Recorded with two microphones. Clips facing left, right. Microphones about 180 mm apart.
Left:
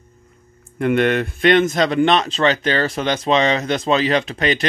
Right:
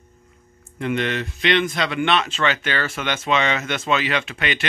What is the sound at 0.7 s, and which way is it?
Speech, 55° left (ahead or behind).